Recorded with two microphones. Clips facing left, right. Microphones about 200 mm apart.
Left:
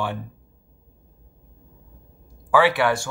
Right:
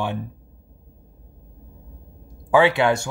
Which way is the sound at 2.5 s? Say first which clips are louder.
Right 2 dB; 20° right (ahead or behind).